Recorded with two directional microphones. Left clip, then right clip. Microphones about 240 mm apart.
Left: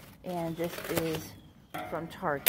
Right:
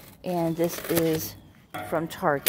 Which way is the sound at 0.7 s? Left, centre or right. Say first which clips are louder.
Right 6 dB; centre.